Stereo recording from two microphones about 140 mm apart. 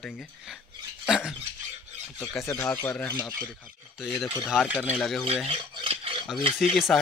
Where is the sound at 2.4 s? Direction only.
Centre (ahead or behind).